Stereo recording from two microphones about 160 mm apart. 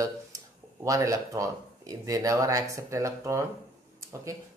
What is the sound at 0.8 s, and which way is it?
Speech, 20° right (ahead or behind).